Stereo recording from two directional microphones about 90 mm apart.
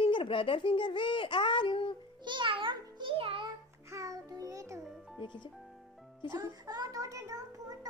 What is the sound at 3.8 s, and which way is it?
Music, 40° right (ahead or behind).